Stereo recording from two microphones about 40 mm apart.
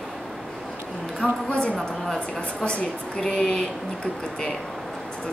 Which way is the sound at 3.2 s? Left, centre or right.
Centre.